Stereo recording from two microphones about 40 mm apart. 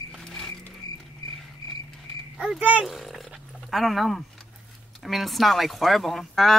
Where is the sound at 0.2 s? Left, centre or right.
Centre.